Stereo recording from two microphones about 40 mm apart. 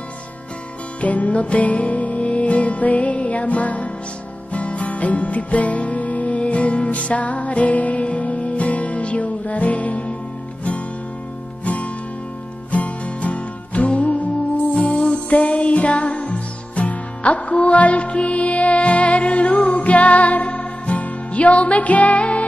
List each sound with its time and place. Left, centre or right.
1.0 s music: left
11.6 s music: left
14.7 s music: left